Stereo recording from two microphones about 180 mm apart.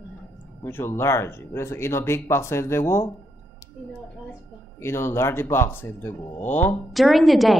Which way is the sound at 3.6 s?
20° left (ahead or behind).